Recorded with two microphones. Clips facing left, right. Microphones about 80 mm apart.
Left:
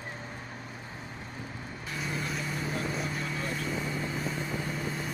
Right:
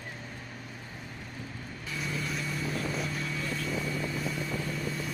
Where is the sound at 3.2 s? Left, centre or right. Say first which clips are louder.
Left 1 dB; left.